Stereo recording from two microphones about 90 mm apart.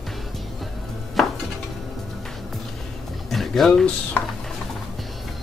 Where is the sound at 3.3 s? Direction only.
Centre (ahead or behind).